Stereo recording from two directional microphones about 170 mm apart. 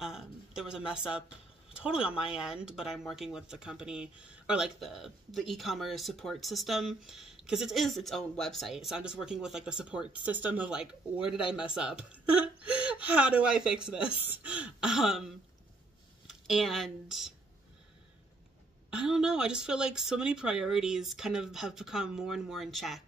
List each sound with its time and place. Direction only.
0.0 s a sound: 5° right (ahead or behind)
1.7 s speech: 5° right (ahead or behind)
18.9 s speech: 5° right (ahead or behind)